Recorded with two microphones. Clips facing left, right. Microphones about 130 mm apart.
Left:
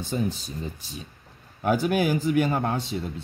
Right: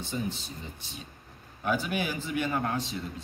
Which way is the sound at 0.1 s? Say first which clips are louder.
Left 6 dB; 50° left (ahead or behind).